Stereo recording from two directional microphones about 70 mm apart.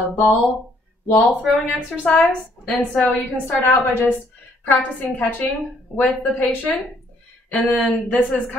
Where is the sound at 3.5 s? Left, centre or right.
Left.